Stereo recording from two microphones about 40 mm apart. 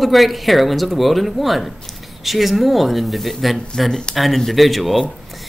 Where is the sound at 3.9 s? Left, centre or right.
Centre.